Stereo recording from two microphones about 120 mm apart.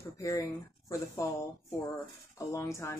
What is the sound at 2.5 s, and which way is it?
Speech, 25° left (ahead or behind).